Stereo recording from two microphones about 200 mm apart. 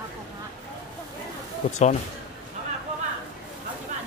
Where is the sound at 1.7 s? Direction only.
35° left (ahead or behind).